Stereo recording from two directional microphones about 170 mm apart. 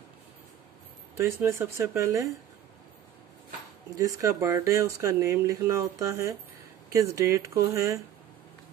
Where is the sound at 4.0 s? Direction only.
20° right (ahead or behind).